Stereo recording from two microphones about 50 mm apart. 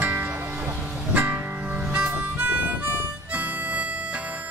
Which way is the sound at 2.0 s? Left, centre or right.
Right.